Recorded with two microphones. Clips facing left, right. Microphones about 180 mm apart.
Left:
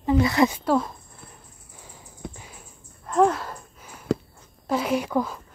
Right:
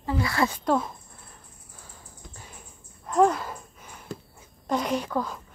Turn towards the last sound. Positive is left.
turn(degrees=10)  # may be behind; listen again after turning